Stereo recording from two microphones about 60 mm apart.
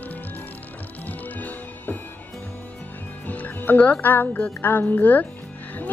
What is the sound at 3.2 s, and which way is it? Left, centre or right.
Speech, left.